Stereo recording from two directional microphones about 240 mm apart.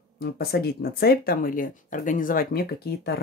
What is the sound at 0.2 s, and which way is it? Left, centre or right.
Speech, left.